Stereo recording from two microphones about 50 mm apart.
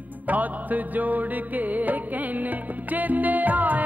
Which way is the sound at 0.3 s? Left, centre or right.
Right.